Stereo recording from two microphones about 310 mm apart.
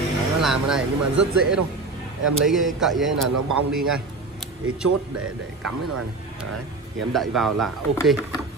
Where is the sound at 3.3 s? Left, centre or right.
Right.